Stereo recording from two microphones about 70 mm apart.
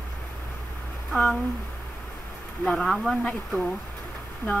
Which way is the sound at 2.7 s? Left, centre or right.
Centre.